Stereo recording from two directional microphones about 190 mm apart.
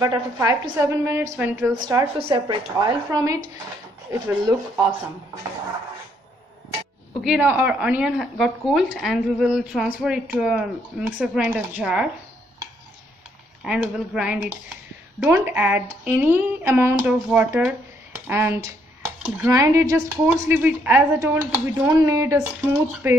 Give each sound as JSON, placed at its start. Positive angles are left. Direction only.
{"t": 0.0, "sound": "a woman's voice", "side_deg": -20}
{"t": 1.7, "sound": "a woman's voice", "side_deg": -20}
{"t": 7.2, "sound": "a woman's voice", "side_deg": -5}
{"t": 13.7, "sound": "a woman's voice", "side_deg": -5}